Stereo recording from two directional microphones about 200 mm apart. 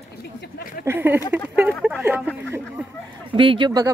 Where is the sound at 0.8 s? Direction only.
10° right (ahead or behind).